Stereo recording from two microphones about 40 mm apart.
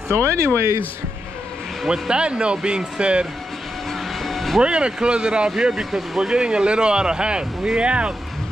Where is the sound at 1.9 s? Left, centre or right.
Right.